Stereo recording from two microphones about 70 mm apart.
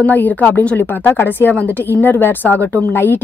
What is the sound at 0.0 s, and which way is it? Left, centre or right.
A woman's voice, left.